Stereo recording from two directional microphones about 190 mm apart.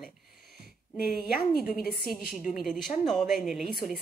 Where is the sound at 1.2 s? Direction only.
50° left (ahead or behind).